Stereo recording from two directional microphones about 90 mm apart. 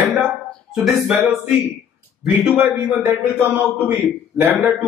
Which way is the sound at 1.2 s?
25° right (ahead or behind).